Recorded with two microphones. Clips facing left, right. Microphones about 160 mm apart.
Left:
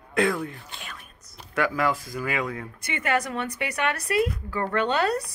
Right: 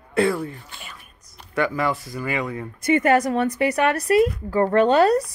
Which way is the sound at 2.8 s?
40° right (ahead or behind).